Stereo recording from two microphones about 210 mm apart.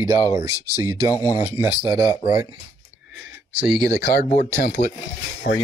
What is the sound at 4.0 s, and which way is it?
Speech, 45° left (ahead or behind).